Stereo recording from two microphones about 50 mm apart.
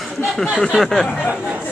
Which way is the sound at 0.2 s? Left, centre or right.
Centre.